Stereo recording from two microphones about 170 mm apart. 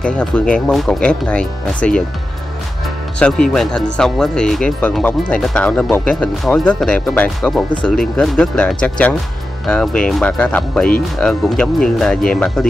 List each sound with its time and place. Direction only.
0.0 s speech: 5° left (ahead or behind)
3.2 s speech: 5° left (ahead or behind)